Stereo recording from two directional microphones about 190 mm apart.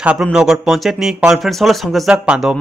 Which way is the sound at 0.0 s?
5° right (ahead or behind).